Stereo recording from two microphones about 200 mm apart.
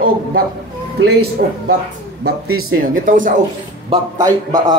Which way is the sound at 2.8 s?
40° right (ahead or behind).